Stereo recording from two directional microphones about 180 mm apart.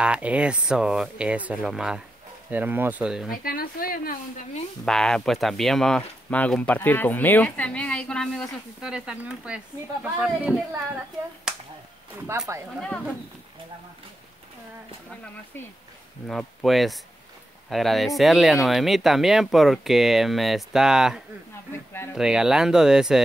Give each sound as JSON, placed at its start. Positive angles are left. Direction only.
{"t": 0.0, "sound": "speech", "side_deg": -5}
{"t": 3.3, "sound": "speech", "side_deg": 55}
{"t": 4.8, "sound": "speech", "side_deg": 5}
{"t": 12.7, "sound": "speech", "side_deg": 5}
{"t": 16.3, "sound": "speech", "side_deg": 0}